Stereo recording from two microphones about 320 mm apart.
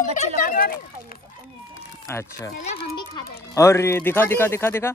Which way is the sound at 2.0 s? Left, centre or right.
Centre.